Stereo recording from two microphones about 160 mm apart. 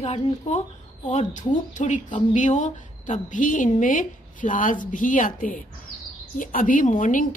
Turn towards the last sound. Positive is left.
turn(degrees=50)  # may be behind; listen again after turning